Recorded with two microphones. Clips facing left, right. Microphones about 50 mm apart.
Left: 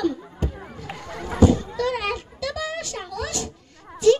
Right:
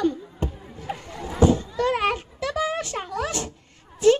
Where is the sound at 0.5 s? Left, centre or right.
Left.